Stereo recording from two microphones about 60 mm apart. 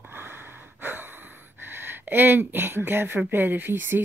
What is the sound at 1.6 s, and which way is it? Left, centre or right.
Speech, right.